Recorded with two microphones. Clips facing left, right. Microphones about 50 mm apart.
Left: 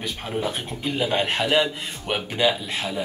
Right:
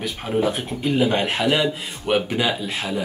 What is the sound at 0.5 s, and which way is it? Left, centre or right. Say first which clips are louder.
A man's voice: right 5 dB; centre.